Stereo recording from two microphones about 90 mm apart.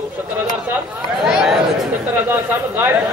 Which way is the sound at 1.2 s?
5° right (ahead or behind).